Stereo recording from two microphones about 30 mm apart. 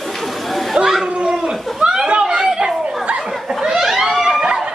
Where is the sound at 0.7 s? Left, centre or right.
Centre.